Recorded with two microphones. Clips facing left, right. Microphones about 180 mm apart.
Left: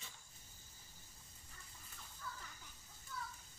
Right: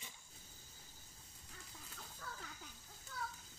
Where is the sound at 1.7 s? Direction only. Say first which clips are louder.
Right 5 dB; 85° right.